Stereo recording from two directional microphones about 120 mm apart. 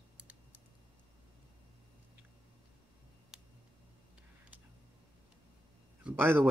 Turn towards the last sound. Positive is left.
turn(degrees=-15)  # may be behind; listen again after turning